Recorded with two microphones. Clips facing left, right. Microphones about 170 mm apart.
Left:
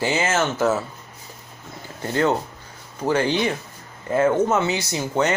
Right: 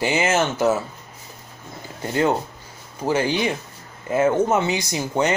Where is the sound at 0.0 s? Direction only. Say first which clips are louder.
Right 2 dB; 15° right (ahead or behind).